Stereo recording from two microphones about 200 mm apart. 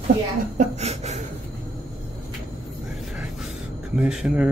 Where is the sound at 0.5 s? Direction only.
30° right (ahead or behind).